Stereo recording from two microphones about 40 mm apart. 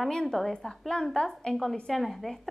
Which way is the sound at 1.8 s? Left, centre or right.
Centre.